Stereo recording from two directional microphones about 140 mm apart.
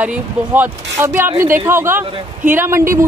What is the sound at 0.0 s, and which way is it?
Speech, 10° right (ahead or behind).